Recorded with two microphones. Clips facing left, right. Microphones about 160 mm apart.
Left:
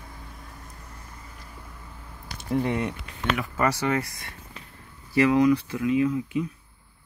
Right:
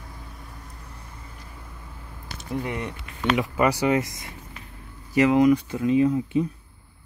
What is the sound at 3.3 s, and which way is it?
Speech, 15° right (ahead or behind).